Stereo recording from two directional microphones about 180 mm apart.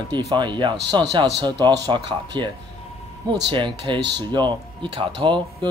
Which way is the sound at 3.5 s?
25° right (ahead or behind).